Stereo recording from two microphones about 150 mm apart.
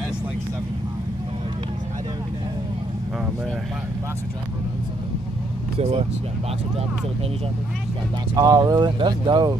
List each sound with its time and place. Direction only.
5.8 s speech: 40° right (ahead or behind)
8.4 s speech: 25° right (ahead or behind)